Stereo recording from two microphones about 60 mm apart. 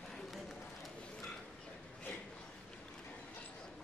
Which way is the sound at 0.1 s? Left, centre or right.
Centre.